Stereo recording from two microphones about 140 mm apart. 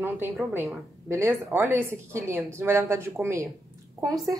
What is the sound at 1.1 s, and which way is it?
A woman's voice, 20° right (ahead or behind).